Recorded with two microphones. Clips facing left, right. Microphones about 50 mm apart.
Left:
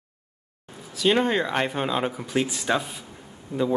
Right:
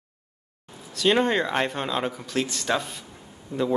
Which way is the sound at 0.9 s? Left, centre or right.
Centre.